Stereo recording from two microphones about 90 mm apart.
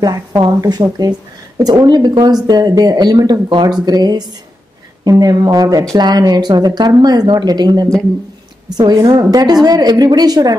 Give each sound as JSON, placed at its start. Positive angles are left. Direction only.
{"t": 0.0, "sound": "speech", "side_deg": -45}